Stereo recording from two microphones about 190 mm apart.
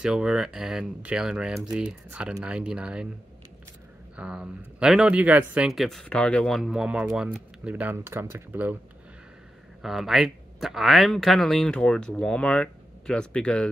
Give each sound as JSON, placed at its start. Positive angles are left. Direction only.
{"t": 0.0, "sound": "speech", "side_deg": -5}
{"t": 4.2, "sound": "speech", "side_deg": -5}
{"t": 9.8, "sound": "speech", "side_deg": 0}